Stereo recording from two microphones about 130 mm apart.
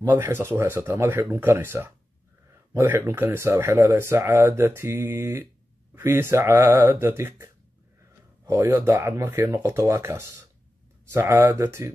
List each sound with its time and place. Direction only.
0.2 s speech: 20° right (ahead or behind)